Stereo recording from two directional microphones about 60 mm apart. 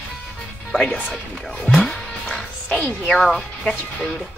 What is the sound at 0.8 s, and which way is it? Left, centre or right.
Speech, left.